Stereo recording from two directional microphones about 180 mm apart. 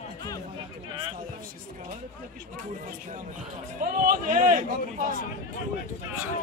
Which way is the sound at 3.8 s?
50° right (ahead or behind).